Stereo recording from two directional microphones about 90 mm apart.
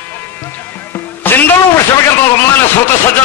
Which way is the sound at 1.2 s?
20° left (ahead or behind).